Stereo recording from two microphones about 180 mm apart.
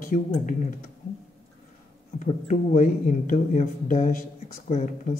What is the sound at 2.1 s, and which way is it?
A man's voice, 45° left (ahead or behind).